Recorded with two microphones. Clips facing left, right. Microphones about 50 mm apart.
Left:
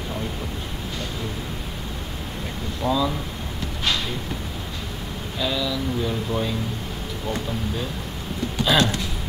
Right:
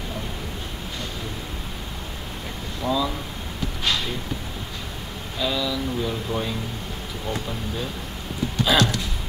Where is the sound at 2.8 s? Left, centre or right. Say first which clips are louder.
Left 1 dB; centre.